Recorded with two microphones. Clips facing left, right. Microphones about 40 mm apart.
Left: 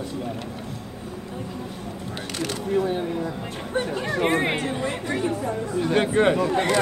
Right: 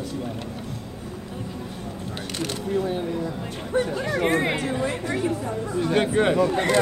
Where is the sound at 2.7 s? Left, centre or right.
Centre.